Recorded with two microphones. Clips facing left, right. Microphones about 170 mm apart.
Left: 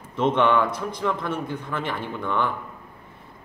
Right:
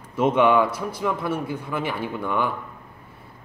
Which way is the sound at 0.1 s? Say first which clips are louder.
Right 2 dB; 10° right (ahead or behind).